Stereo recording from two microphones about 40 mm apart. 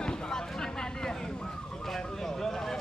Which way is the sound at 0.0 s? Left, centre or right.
Left.